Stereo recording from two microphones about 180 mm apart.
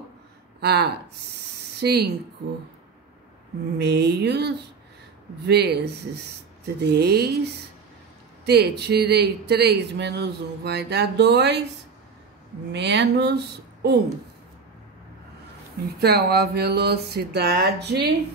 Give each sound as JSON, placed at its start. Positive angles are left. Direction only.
{"t": 0.6, "sound": "speech", "side_deg": -65}
{"t": 3.7, "sound": "speech", "side_deg": -65}
{"t": 8.5, "sound": "speech", "side_deg": -65}
{"t": 12.7, "sound": "speech", "side_deg": -70}
{"t": 16.0, "sound": "speech", "side_deg": -60}